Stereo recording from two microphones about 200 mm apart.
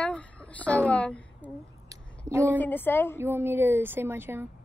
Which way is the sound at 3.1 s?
10° right (ahead or behind).